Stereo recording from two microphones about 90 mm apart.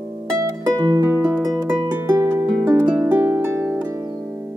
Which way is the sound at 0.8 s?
50° right (ahead or behind).